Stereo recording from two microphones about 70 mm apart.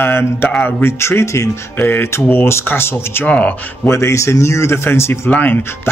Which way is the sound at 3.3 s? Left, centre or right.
Centre.